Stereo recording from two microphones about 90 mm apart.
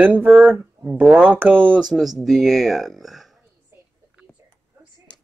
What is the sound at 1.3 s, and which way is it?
Speech, 15° right (ahead or behind).